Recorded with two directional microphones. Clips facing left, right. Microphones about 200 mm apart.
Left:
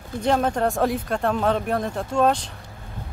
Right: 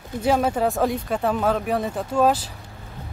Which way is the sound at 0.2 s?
5° right (ahead or behind).